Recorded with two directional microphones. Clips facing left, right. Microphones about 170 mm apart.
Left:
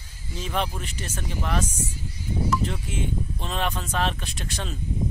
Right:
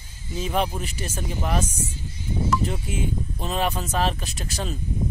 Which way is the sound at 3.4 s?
5° right (ahead or behind).